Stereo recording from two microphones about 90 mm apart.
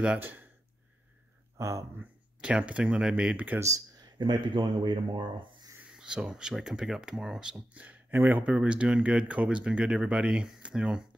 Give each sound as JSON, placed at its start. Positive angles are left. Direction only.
{"t": 1.6, "sound": "speech", "side_deg": -35}
{"t": 2.0, "sound": "speech", "side_deg": -15}
{"t": 3.5, "sound": "speech", "side_deg": -35}
{"t": 4.0, "sound": "speech", "side_deg": -55}
{"t": 5.8, "sound": "speech", "side_deg": -10}